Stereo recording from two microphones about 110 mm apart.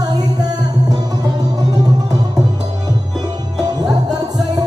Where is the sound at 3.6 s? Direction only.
40° right (ahead or behind).